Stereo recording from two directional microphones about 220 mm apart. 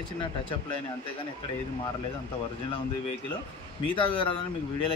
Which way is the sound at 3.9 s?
20° left (ahead or behind).